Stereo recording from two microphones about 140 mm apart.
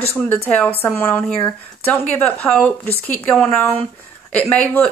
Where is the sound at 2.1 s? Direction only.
10° left (ahead or behind).